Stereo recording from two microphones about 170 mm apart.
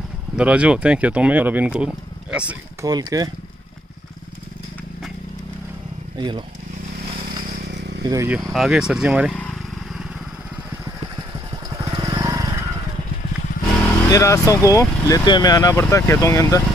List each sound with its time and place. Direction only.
0.4 s speech: 5° right (ahead or behind)
2.8 s speech: 20° right (ahead or behind)
6.1 s speech: 25° right (ahead or behind)
7.7 s vehicle: 90° right
8.0 s speech: 20° right (ahead or behind)
8.3 s speech: centre (ahead or behind)
9.4 s vehicle: centre (ahead or behind)
11.1 s vehicle: 20° right (ahead or behind)
13.7 s vehicle: 10° left (ahead or behind)
14.0 s speech: 20° left (ahead or behind)